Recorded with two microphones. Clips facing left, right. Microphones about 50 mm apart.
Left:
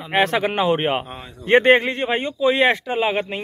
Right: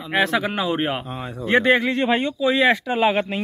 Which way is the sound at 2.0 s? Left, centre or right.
Left.